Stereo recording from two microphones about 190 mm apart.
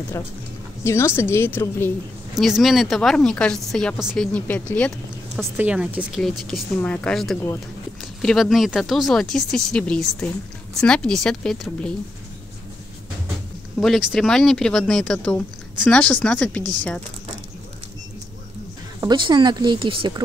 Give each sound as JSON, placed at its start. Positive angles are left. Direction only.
{"t": 0.8, "sound": "a woman's voice", "side_deg": 15}
{"t": 2.3, "sound": "speech", "side_deg": 0}
{"t": 13.7, "sound": "a woman's voice", "side_deg": 0}
{"t": 18.9, "sound": "speech", "side_deg": -25}